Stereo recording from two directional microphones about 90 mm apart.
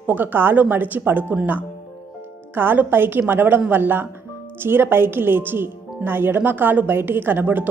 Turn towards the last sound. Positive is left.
turn(degrees=-20)  # may be behind; listen again after turning